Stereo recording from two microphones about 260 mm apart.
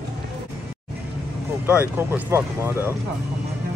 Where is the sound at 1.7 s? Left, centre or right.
Centre.